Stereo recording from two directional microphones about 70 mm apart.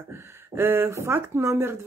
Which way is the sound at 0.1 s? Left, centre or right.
Right.